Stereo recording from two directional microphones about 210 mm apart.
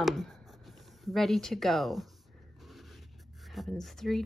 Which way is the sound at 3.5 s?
Centre (ahead or behind).